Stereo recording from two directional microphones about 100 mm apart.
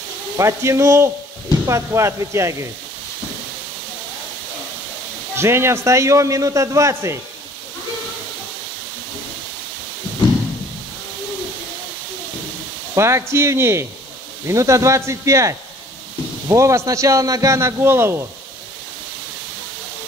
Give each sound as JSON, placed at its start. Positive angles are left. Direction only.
{"t": 0.4, "sound": "a man's voice", "side_deg": -30}
{"t": 5.3, "sound": "a man's voice", "side_deg": -25}
{"t": 12.9, "sound": "a man's voice", "side_deg": -25}